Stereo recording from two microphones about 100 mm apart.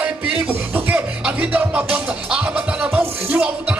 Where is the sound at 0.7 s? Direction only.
20° right (ahead or behind).